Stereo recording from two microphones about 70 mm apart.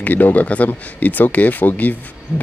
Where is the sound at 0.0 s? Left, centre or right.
Left.